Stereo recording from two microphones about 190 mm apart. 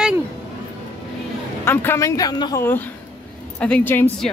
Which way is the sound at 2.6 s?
10° left (ahead or behind).